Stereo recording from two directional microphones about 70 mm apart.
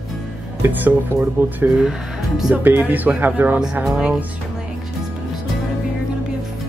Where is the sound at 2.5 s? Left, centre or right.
Right.